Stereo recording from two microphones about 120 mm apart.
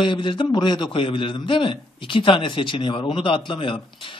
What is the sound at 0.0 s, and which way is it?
A man's voice, 40° left (ahead or behind).